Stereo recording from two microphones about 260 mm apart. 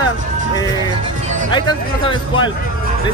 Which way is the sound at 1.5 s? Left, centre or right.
Centre.